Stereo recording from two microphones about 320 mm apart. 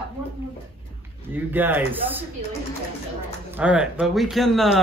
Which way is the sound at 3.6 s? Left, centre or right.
Centre.